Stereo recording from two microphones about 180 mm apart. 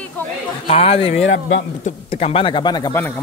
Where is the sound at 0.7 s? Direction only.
30° left (ahead or behind).